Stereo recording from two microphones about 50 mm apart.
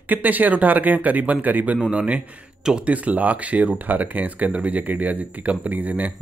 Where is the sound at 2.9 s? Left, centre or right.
Right.